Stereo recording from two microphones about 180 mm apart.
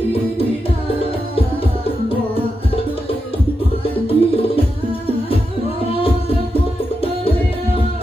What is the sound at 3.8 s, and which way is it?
Music, 30° left (ahead or behind).